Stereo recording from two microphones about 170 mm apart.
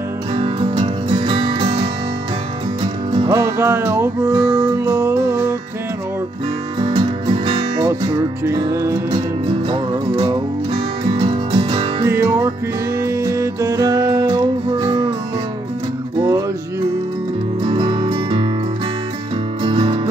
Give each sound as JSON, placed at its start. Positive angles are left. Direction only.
{"t": 0.3, "sound": "music", "side_deg": -30}
{"t": 3.5, "sound": "music", "side_deg": -15}
{"t": 6.8, "sound": "music", "side_deg": -30}
{"t": 9.1, "sound": "music", "side_deg": -30}
{"t": 12.1, "sound": "music", "side_deg": -15}
{"t": 16.2, "sound": "music", "side_deg": -25}
{"t": 17.6, "sound": "music", "side_deg": -30}
{"t": 19.6, "sound": "music", "side_deg": -30}